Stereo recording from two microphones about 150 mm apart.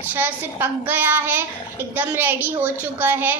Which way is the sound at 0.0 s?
10° right (ahead or behind).